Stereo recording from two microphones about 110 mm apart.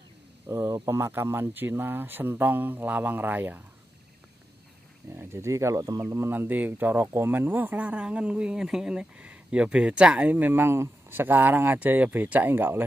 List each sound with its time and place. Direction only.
0.5 s speech: 25° right (ahead or behind)
5.1 s speech: 25° right (ahead or behind)